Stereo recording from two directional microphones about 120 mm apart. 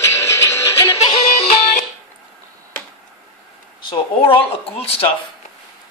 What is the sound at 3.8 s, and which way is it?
Speech, 45° left (ahead or behind).